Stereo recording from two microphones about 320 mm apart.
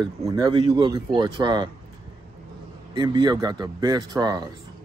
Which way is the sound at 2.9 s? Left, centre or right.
Centre.